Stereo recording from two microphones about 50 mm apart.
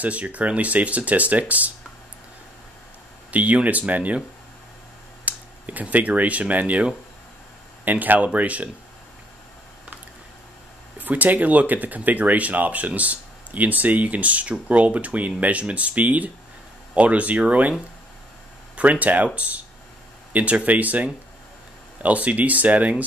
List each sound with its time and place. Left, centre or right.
0.0 s speech: right
3.3 s speech: right
5.2 s speech: right
11.0 s speech: right
18.8 s speech: right